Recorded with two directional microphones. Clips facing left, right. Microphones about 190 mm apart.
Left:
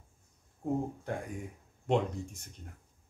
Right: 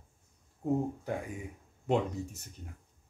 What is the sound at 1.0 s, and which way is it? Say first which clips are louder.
Speech: right 1 dB; 5° right (ahead or behind).